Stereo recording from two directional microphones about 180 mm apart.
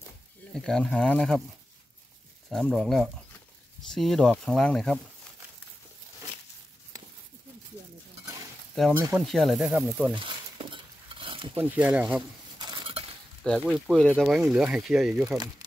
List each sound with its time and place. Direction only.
0.7 s speech: 5° left (ahead or behind)
2.5 s speech: centre (ahead or behind)
9.1 s speech: centre (ahead or behind)
10.1 s stir: 30° right (ahead or behind)
11.5 s speech: 10° right (ahead or behind)
12.5 s dishes: 25° right (ahead or behind)
13.6 s speech: centre (ahead or behind)